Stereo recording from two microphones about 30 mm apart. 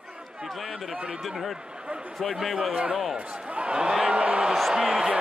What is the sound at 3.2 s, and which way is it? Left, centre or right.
Speech, right.